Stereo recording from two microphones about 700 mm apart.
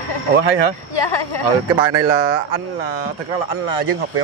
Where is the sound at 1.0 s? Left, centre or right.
Left.